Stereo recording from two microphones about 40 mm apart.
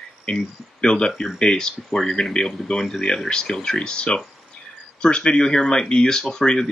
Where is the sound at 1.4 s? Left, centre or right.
Left.